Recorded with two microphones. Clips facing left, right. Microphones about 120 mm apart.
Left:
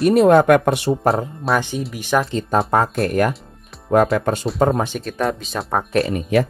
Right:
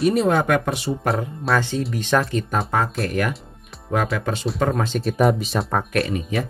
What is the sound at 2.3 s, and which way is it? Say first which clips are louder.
Speech: left 4 dB; 30° left (ahead or behind).